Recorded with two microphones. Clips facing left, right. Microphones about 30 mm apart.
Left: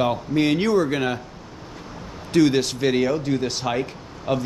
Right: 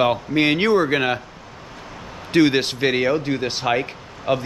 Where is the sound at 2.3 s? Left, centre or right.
Right.